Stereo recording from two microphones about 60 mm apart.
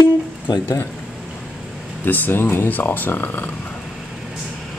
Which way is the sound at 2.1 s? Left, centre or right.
Left.